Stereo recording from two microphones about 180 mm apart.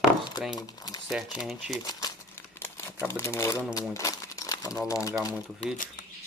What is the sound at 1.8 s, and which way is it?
Crumpling, 20° left (ahead or behind).